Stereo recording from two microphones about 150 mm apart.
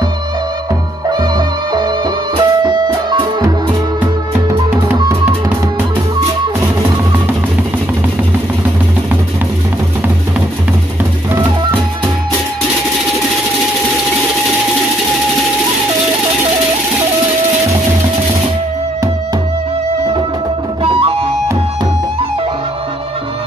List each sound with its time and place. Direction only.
2.3 s music: 30° right (ahead or behind)
4.5 s music: 15° right (ahead or behind)
20.8 s music: 40° right (ahead or behind)